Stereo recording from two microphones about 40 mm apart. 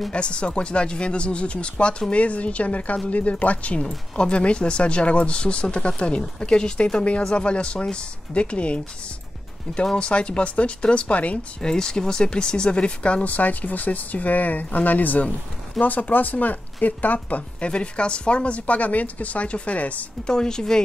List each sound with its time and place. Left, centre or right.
0.1 s speech: left
3.8 s speech: left
9.9 s speech: left
11.6 s speech: centre; by 17.4 s left
17.6 s speech: left
20.2 s speech: centre